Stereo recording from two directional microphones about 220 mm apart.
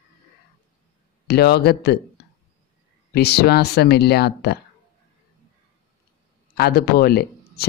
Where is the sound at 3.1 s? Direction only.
45° left (ahead or behind).